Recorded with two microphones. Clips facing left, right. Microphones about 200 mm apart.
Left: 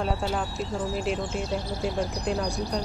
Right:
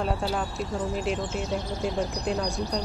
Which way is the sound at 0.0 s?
Centre (ahead or behind).